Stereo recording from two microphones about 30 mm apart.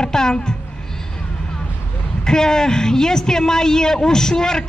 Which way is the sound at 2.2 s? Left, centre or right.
Left.